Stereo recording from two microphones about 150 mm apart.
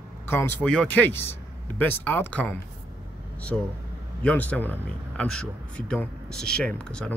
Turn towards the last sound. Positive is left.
turn(degrees=10)  # may be behind; listen again after turning